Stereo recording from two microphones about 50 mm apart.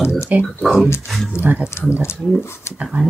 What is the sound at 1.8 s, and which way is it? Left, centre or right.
Speech, left.